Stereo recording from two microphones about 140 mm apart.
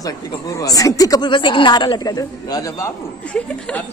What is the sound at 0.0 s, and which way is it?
Speech, 25° left (ahead or behind).